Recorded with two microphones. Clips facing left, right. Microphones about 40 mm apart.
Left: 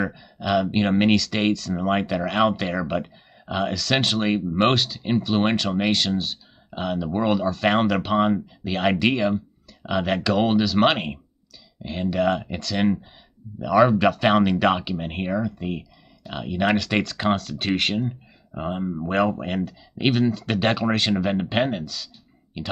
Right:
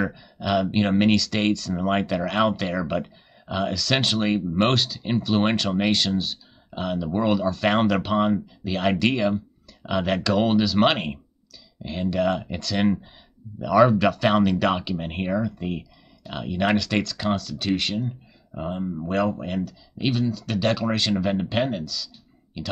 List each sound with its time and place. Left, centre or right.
0.0 s speech: centre
16.9 s speech: centre
18.5 s speech: left
20.2 s speech: left
20.8 s speech: centre